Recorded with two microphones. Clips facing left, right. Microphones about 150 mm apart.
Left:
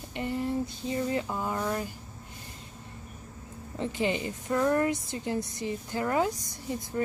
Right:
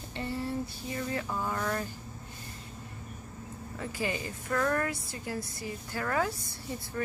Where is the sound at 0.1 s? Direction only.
20° left (ahead or behind).